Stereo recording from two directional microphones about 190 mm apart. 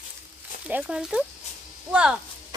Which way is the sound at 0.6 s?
5° right (ahead or behind).